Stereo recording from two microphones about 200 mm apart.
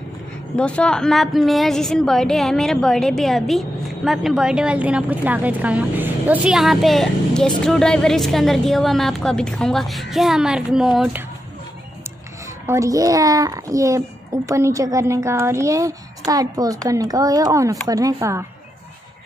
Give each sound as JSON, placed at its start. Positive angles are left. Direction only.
{"t": 0.6, "sound": "a woman's voice", "side_deg": 5}
{"t": 12.6, "sound": "speech", "side_deg": -15}